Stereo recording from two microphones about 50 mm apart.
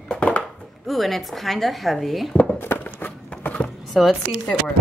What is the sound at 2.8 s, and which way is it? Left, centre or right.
Walk, left.